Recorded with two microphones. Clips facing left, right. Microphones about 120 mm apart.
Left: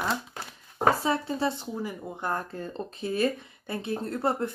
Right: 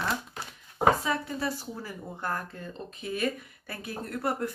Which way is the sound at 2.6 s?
30° left (ahead or behind).